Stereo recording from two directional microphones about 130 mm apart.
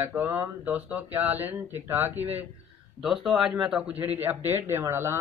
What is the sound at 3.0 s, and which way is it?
Speech, centre (ahead or behind).